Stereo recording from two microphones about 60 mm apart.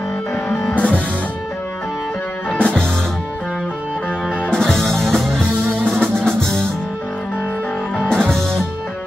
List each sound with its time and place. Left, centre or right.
0.7 s music: left
2.5 s music: centre
4.5 s music: centre
8.1 s music: centre